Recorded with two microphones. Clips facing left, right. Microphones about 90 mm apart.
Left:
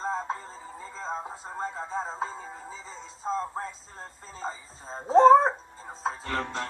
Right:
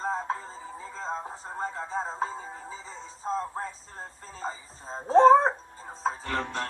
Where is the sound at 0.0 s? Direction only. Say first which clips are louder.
Right 1 dB; 5° right (ahead or behind).